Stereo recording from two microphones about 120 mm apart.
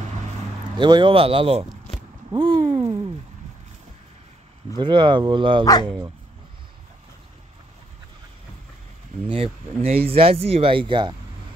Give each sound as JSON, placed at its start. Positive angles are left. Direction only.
{"t": 0.7, "sound": "speech", "side_deg": -40}
{"t": 2.3, "sound": "a sound", "side_deg": -45}
{"t": 4.7, "sound": "speech", "side_deg": -40}
{"t": 9.3, "sound": "speech", "side_deg": -55}